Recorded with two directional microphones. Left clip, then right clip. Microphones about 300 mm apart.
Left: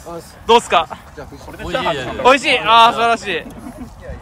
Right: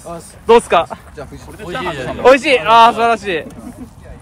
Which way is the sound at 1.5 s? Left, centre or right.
Left.